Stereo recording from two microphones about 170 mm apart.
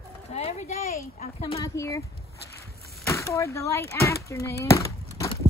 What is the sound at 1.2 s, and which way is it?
Speech, 35° left (ahead or behind).